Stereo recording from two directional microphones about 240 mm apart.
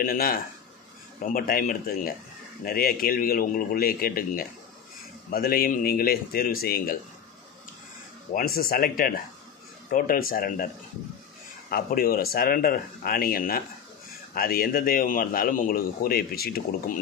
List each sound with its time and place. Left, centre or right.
0.0 s a man's voice: left
8.3 s a man's voice: left
11.7 s a man's voice: left